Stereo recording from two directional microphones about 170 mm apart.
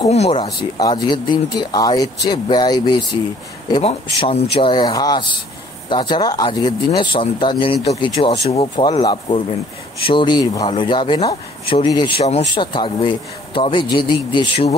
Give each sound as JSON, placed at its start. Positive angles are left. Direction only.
{"t": 0.1, "sound": "speech", "side_deg": 40}
{"t": 0.6, "sound": "speech", "side_deg": 25}